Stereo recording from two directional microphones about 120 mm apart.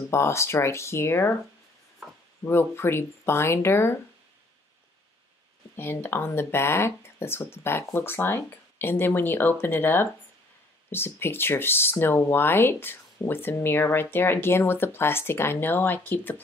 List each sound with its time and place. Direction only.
0.1 s speech: 20° left (ahead or behind)
2.4 s speech: 20° left (ahead or behind)
5.8 s speech: 20° left (ahead or behind)